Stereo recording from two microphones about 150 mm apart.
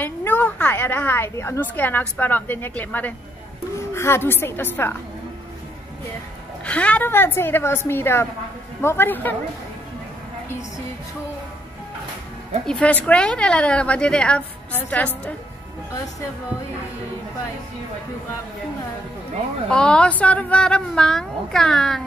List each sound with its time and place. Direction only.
0.0 s a woman's voice: 10° left (ahead or behind)
6.6 s a woman's voice: 10° left (ahead or behind)
12.6 s a woman's voice: 5° left (ahead or behind)
19.7 s a woman's voice: 5° left (ahead or behind)